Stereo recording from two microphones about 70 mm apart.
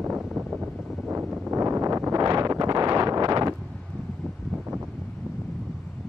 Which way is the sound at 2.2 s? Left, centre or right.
Right.